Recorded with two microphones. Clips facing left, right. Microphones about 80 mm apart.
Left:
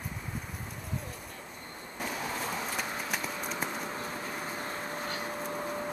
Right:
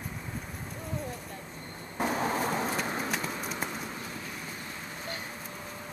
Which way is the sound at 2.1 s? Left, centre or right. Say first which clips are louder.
Right 5 dB; right.